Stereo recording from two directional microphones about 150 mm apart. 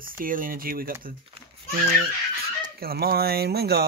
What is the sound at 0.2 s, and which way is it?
Speech, 65° right (ahead or behind).